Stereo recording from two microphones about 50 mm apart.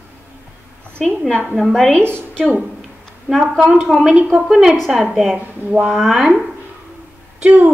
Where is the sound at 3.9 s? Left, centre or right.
Centre.